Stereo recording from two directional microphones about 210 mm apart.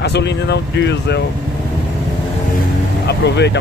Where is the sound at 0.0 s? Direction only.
55° left (ahead or behind).